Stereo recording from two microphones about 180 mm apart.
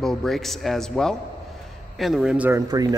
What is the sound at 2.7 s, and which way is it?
Speech, 20° right (ahead or behind).